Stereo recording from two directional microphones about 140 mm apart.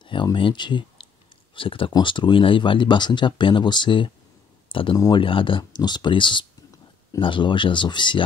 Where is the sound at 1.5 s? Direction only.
40° left (ahead or behind).